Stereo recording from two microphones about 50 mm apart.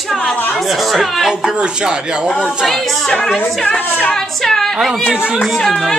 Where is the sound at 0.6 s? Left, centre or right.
Centre.